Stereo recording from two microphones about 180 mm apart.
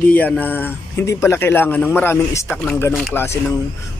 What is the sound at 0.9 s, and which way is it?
A man's voice, 15° left (ahead or behind).